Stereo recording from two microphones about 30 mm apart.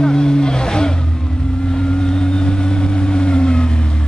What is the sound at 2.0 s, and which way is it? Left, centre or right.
Vehicle, left.